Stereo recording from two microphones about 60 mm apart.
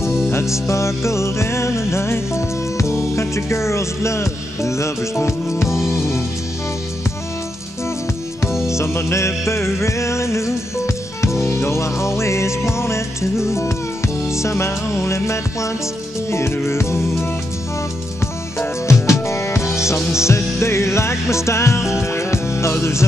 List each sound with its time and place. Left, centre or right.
0.3 s music: left
8.6 s music: left
18.6 s music: left